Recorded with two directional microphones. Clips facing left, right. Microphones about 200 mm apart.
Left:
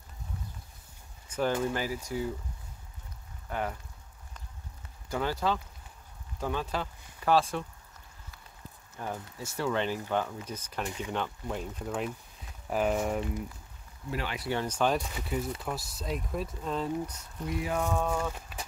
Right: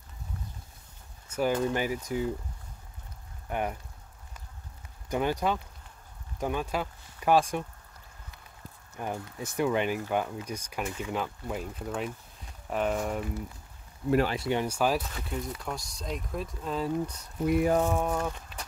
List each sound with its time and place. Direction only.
1.3 s speech: 10° right (ahead or behind)
3.4 s speech: 20° right (ahead or behind)
5.1 s speech: 20° right (ahead or behind)
8.9 s speech: 15° right (ahead or behind); by 13.3 s centre (ahead or behind)
14.3 s speech: 20° right (ahead or behind); by 15.0 s 5° right (ahead or behind)
15.0 s speech: 5° left (ahead or behind)
17.5 s speech: 55° right (ahead or behind)
17.8 s speech: 15° right (ahead or behind)
18.3 s a sound: 5° left (ahead or behind)